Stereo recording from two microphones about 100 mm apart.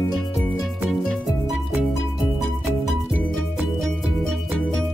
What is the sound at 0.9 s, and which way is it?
Music, centre (ahead or behind).